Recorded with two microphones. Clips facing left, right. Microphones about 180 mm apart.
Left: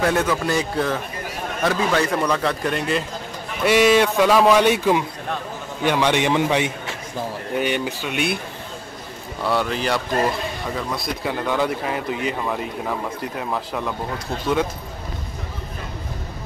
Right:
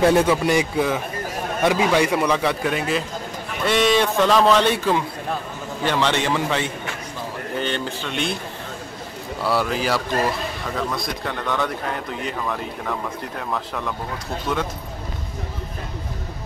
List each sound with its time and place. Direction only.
0.0 s speech: 25° right (ahead or behind)
0.6 s a man's voice: 10° right (ahead or behind); by 8.4 s 10° left (ahead or behind)
9.4 s speech: 5° right (ahead or behind)